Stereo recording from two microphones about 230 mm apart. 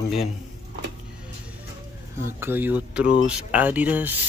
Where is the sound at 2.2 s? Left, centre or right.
Centre.